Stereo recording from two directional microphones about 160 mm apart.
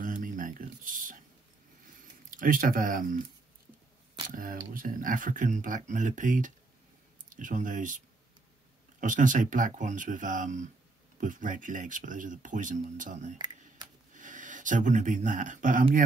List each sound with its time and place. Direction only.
0.0 s a sound: 55° right (ahead or behind)
2.3 s speech: 60° right (ahead or behind)
4.3 s speech: 60° right (ahead or behind)
9.0 s speech: 55° right (ahead or behind)
13.4 s a sound: 25° right (ahead or behind)
14.1 s speech: 55° right (ahead or behind)